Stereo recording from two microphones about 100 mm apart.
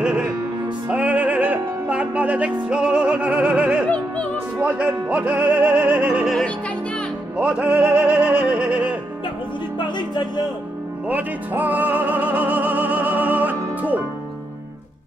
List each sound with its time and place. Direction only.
0.8 s music: 15° right (ahead or behind)
7.3 s music: 10° right (ahead or behind)
9.8 s music: 50° left (ahead or behind)
11.1 s music: 15° right (ahead or behind)